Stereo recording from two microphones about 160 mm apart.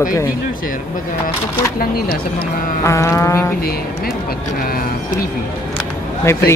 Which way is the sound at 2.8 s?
20° left (ahead or behind).